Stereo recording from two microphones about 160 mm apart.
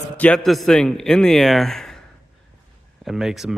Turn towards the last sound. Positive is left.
turn(degrees=-5)  # may be behind; listen again after turning